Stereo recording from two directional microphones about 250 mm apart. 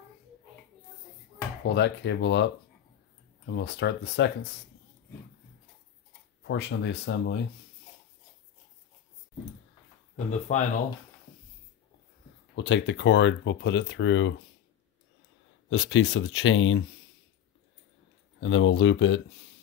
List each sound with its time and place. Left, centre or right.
1.6 s speech: left
3.4 s speech: left
6.4 s speech: left
10.5 s speech: left
12.5 s speech: left
15.7 s speech: left
18.4 s speech: left